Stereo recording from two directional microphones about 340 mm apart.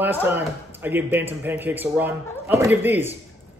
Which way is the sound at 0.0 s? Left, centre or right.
Centre.